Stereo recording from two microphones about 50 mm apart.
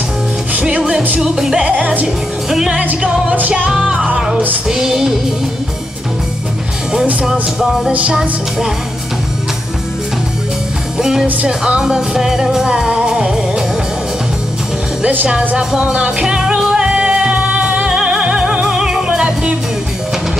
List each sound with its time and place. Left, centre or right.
0.6 s music: centre
1.6 s music: right
3.3 s music: right
3.7 s music: centre
4.6 s music: centre
8.1 s music: centre
11.0 s music: centre
15.5 s music: centre